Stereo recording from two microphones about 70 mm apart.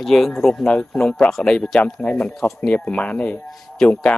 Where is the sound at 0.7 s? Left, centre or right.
Centre.